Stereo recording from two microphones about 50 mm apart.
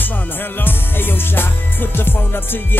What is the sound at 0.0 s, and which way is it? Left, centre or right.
Music, left.